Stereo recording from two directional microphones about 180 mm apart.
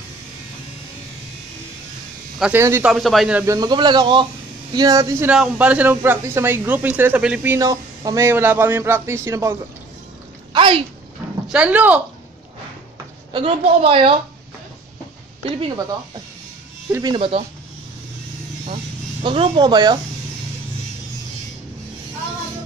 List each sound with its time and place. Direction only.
2.3 s speech: 5° right (ahead or behind)
2.9 s speech: centre (ahead or behind)
3.4 s speech: 20° right (ahead or behind); by 7.5 s 5° right (ahead or behind)
7.5 s speech: 20° right (ahead or behind)
10.5 s speech: 30° right (ahead or behind)
11.4 s speech: 5° right (ahead or behind)
13.3 s speech: 30° right (ahead or behind)
16.9 s speech: 25° right (ahead or behind)
19.2 s speech: 30° right (ahead or behind)